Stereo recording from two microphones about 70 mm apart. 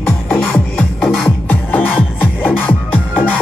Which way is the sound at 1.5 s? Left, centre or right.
Left.